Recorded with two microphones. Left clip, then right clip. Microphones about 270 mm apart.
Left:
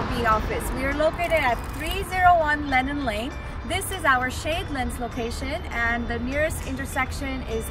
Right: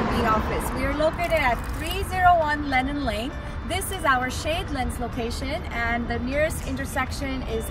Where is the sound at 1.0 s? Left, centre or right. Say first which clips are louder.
Left 1 dB; centre.